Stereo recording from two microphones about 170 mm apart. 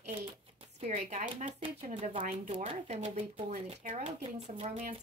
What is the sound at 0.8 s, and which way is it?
Speech, 45° right (ahead or behind).